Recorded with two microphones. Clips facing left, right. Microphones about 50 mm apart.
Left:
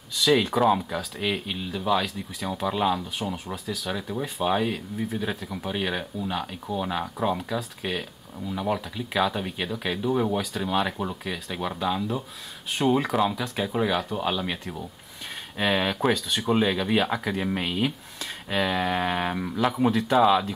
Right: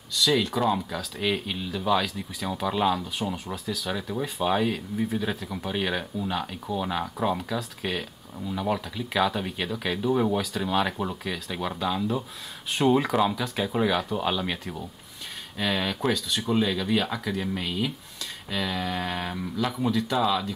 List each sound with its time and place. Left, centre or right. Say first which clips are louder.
0.3 s speech: left 4 dB; centre
15.5 s speech: left 3 dB; left
20.2 s speech: left 5 dB; left